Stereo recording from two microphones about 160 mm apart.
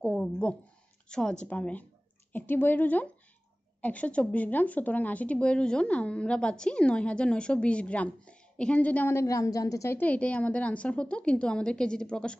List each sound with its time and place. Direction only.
0.0 s a woman's voice: 5° left (ahead or behind)